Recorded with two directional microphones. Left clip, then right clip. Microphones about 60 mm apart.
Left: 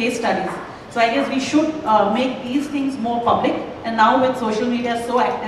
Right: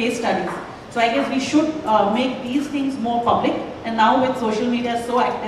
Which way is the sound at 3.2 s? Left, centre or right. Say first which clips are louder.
Left 1 dB; left.